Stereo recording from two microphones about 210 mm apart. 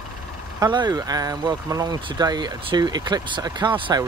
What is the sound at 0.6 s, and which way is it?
Speech, 20° right (ahead or behind).